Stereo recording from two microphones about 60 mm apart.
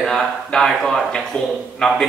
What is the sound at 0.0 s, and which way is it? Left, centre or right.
A man's voice, centre.